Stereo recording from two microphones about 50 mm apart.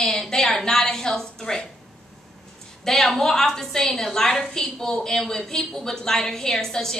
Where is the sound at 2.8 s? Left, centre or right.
Centre.